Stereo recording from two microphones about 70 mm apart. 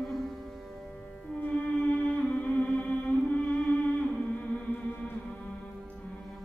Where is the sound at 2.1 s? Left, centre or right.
Centre.